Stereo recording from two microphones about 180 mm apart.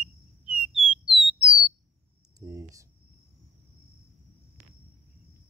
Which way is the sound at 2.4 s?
15° right (ahead or behind).